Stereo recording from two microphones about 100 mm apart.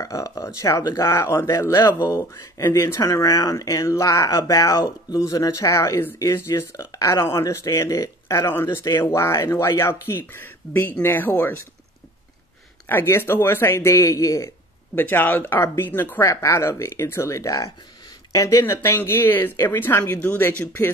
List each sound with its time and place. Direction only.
0.0 s speech: 35° left (ahead or behind)
12.8 s speech: 25° left (ahead or behind)
15.0 s speech: 20° left (ahead or behind)